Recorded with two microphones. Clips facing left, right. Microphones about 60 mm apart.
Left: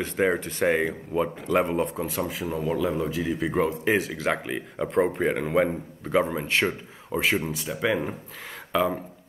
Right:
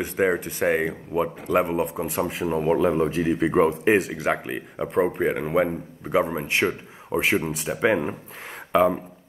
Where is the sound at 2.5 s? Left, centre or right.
Right.